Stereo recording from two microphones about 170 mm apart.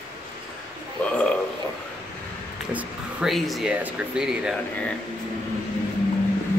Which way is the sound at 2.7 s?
Centre (ahead or behind).